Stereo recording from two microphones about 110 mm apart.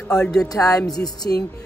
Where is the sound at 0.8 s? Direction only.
5° left (ahead or behind).